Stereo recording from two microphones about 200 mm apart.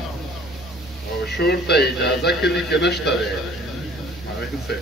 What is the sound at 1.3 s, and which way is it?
A man's voice, 55° left (ahead or behind).